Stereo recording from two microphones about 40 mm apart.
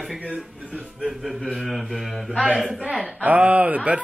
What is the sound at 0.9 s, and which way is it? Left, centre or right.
Mantra, centre.